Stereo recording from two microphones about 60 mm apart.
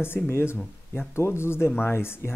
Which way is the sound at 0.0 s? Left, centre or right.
Left.